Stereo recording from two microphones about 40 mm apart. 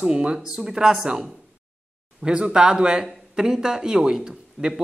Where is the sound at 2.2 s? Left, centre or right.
Centre.